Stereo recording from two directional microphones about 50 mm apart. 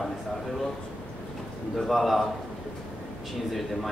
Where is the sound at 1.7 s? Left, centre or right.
Centre.